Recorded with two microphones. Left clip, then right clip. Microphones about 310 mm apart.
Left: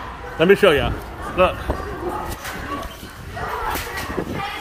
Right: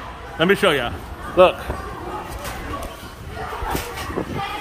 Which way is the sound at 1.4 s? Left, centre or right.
Right.